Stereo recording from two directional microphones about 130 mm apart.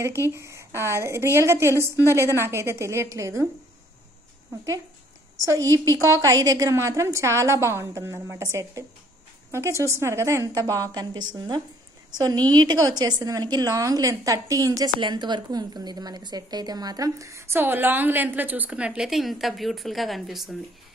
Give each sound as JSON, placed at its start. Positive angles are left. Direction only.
{"t": 0.0, "sound": "a woman's voice", "side_deg": -20}
{"t": 5.4, "sound": "a woman's voice", "side_deg": -25}